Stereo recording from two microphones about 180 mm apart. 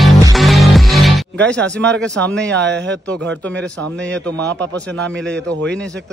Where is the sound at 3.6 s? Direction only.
5° left (ahead or behind).